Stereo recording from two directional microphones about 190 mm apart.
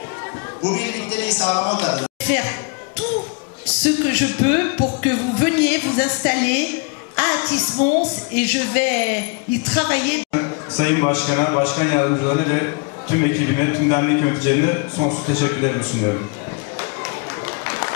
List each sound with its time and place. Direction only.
0.7 s a man's voice: 15° left (ahead or behind)
1.4 s speech: 25° left (ahead or behind)
2.2 s speech: 10° left (ahead or behind)
3.8 s a man's voice: 10° left (ahead or behind)
17.0 s a sound: 15° left (ahead or behind)